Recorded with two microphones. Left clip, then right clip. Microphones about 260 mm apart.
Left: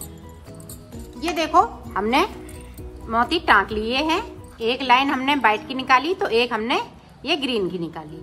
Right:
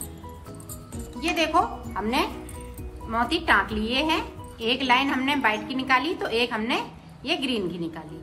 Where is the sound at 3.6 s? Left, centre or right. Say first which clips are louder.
Left 5 dB; left.